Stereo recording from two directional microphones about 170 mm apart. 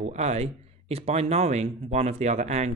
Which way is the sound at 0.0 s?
40° right (ahead or behind).